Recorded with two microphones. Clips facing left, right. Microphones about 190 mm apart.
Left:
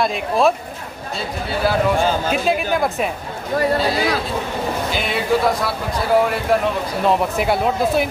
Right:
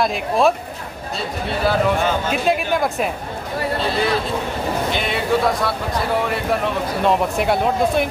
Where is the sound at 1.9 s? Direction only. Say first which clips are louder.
Left 1 dB; 35° left (ahead or behind).